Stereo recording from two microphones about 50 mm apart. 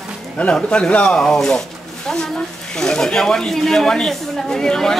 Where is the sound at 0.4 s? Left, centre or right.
Left.